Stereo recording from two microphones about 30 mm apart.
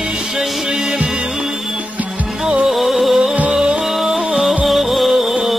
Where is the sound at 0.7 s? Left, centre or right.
Centre.